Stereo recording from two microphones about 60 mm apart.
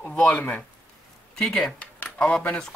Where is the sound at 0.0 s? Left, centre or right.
Left.